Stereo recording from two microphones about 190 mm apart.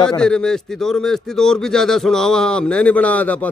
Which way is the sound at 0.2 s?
5° left (ahead or behind).